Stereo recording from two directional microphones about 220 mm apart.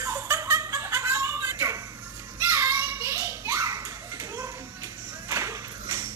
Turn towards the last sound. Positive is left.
turn(degrees=-15)  # may be behind; listen again after turning